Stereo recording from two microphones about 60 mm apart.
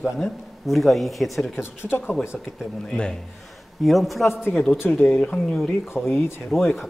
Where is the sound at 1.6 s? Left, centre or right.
Left.